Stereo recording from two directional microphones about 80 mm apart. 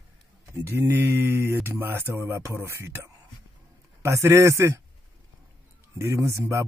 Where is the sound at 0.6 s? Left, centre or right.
Right.